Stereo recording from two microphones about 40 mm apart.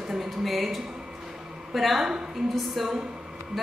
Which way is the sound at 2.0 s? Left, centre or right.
Centre.